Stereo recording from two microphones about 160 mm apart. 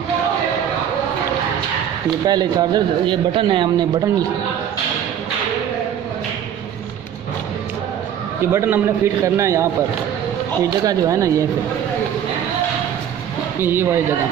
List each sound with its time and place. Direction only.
2.2 s a man's voice: 25° right (ahead or behind)
8.5 s a man's voice: 15° right (ahead or behind)
10.9 s a man's voice: 20° right (ahead or behind)
13.6 s a man's voice: 15° right (ahead or behind)